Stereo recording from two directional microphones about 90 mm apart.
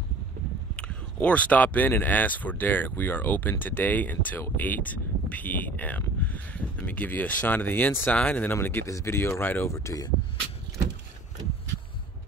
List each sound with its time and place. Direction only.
0.7 s speech: 15° left (ahead or behind); by 10.0 s 35° left (ahead or behind)